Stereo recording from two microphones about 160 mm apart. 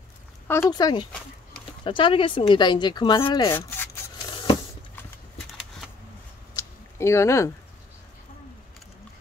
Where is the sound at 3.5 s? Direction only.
15° left (ahead or behind).